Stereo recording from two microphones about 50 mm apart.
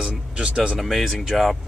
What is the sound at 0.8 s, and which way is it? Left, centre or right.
Speech, centre.